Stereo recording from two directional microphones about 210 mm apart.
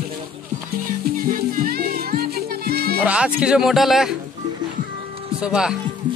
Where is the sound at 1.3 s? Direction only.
45° right (ahead or behind).